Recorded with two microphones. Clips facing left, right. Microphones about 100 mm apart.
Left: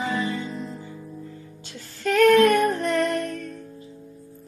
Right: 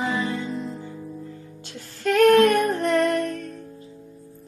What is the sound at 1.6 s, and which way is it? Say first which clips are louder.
Music: right 2 dB; 50° right (ahead or behind).